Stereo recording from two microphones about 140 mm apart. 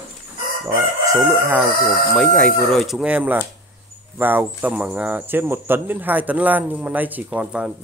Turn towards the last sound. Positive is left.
turn(degrees=-5)  # may be behind; listen again after turning